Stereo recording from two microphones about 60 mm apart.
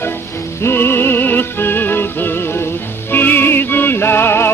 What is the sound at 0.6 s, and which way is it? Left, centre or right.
Music, left.